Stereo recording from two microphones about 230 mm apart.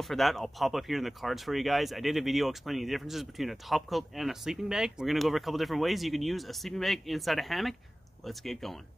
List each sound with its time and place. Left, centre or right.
0.0 s speech: centre